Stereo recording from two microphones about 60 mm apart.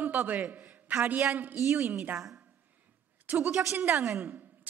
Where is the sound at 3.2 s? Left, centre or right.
Right.